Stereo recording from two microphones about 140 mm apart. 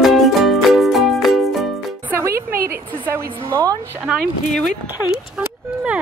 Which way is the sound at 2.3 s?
90° right.